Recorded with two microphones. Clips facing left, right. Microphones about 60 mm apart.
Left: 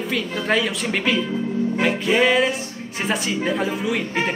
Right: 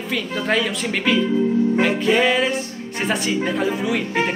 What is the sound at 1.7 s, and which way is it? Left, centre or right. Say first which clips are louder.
Music: right 1 dB; centre.